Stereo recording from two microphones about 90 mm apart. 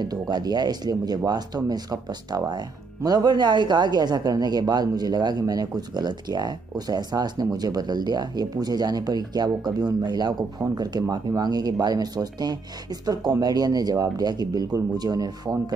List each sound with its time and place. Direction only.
0.0 s speech: 50° right (ahead or behind)